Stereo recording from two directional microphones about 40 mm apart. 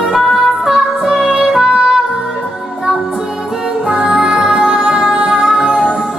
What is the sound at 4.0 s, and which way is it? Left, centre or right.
Music, centre.